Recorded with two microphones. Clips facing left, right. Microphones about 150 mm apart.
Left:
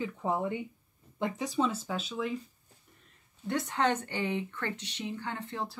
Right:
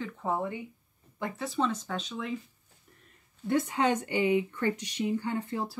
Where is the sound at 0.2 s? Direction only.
15° left (ahead or behind).